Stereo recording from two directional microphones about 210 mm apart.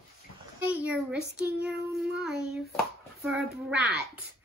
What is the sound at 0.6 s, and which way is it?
A child's voice, 5° right (ahead or behind).